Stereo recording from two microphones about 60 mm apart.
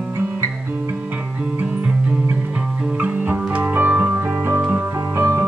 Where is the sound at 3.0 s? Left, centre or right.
Right.